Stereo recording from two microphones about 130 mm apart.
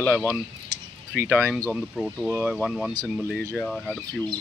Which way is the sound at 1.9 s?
Centre (ahead or behind).